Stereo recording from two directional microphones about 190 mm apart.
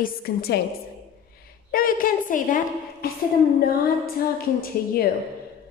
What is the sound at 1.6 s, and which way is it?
A woman's voice, 50° left (ahead or behind).